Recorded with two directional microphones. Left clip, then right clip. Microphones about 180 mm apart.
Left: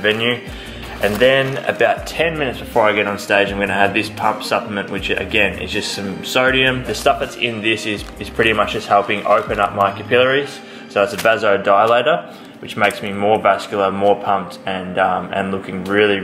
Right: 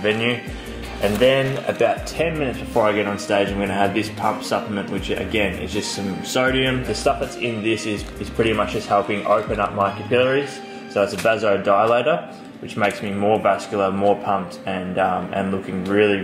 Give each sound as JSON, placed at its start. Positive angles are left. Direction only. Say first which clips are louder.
{"t": 0.0, "sound": "speech", "louder": "left 4 dB", "side_deg": 10}
{"t": 5.7, "sound": "speech", "louder": "left 4 dB", "side_deg": 35}
{"t": 6.3, "sound": "speech", "louder": "left 5 dB", "side_deg": 10}
{"t": 8.8, "sound": "speech", "louder": "left 4 dB", "side_deg": 15}